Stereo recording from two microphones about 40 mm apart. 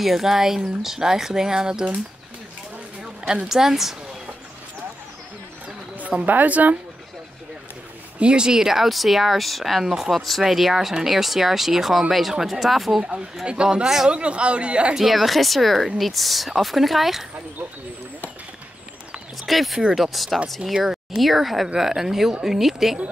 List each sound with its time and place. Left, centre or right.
0.0 s speech: centre
3.0 s a sound: right
3.4 s speech: centre
5.9 s a woman's voice: right
8.2 s speech: right; by 13.0 s centre
13.5 s a man's voice: right
13.8 s speech: centre
14.1 s a man's voice: right
15.0 s speech: centre
19.4 s speech: centre
20.7 s speech: centre